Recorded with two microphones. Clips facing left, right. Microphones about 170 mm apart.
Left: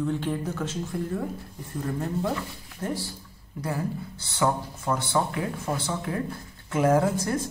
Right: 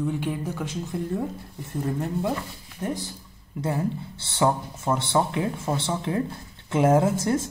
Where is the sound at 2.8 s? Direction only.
20° right (ahead or behind).